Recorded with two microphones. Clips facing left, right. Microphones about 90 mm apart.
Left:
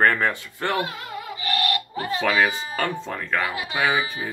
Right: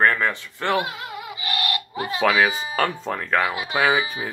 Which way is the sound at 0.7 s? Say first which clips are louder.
Right 2 dB; 15° right (ahead or behind).